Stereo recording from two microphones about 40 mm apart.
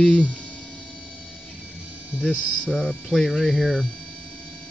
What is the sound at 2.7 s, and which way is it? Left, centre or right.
Hum, centre.